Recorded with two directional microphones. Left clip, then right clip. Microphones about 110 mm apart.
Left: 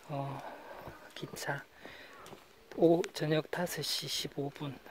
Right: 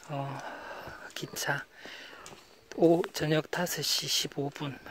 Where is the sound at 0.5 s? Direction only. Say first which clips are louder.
Right 6 dB; 30° right (ahead or behind).